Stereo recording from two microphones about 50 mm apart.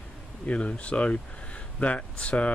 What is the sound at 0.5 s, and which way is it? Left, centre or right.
Speech, centre.